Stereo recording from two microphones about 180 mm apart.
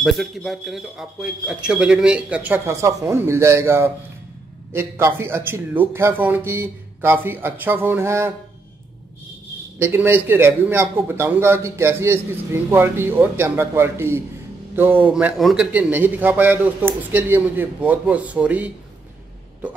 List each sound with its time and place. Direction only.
0.0 s a man's voice: centre (ahead or behind)
9.8 s a man's voice: 10° right (ahead or behind)